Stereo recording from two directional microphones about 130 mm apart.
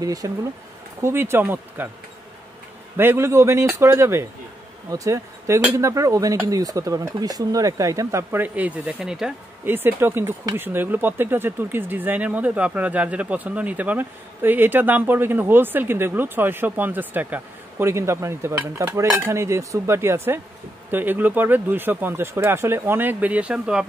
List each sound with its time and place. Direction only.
0.0 s speech: 30° right (ahead or behind)
3.0 s speech: 20° right (ahead or behind)
9.7 s speech: 15° right (ahead or behind)